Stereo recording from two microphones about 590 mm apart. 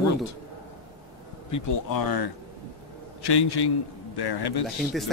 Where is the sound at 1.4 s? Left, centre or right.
Left.